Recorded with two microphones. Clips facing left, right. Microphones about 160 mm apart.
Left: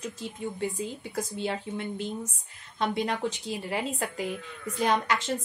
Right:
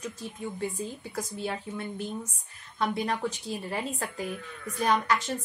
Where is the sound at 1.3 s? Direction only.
20° left (ahead or behind).